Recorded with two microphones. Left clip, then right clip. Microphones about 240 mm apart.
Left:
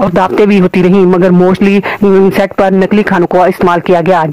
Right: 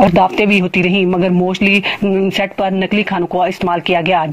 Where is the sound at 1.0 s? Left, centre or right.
Left.